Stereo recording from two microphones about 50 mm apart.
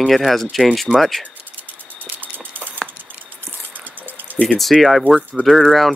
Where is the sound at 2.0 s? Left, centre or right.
Right.